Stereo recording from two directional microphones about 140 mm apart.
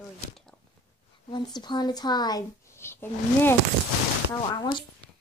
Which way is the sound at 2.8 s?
15° left (ahead or behind).